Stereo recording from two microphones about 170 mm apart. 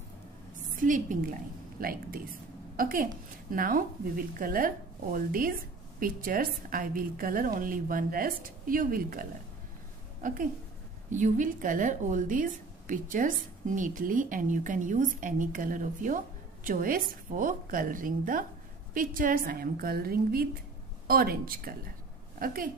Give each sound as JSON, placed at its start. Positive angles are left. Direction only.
{"t": 0.7, "sound": "a woman's voice", "side_deg": -50}